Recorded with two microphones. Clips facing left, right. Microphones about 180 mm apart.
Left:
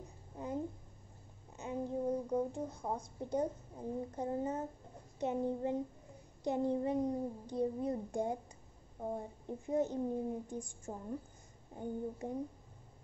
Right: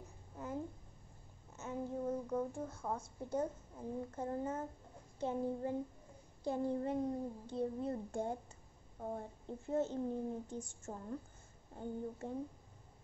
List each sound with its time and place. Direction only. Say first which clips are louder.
1.6 s a child's voice: left 3 dB; 15° left (ahead or behind)
5.2 s child singing: left 3 dB; 20° left (ahead or behind)
6.4 s a child's voice: left 3 dB; 20° left (ahead or behind)